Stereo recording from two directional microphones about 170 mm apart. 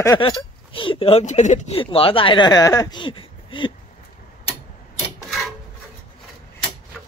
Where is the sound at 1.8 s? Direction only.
30° left (ahead or behind).